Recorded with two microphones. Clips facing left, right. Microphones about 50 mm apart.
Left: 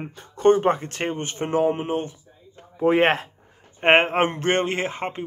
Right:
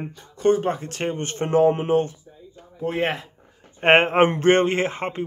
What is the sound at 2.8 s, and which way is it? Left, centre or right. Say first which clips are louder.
Speech: left 6 dB; left.